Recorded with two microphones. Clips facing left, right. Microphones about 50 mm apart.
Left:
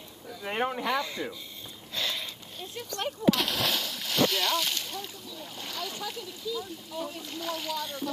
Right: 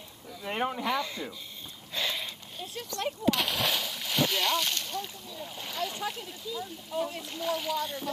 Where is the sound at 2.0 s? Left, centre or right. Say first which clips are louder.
Right 1 dB; centre.